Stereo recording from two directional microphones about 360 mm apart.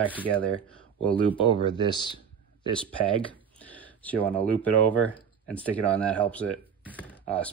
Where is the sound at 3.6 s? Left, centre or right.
Centre.